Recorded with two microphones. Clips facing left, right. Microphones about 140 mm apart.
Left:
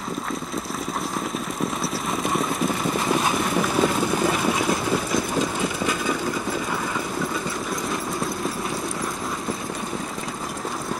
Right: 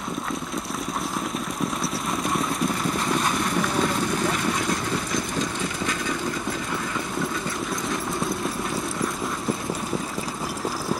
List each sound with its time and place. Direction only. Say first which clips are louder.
1.8 s vehicle: left 1 dB; centre (ahead or behind)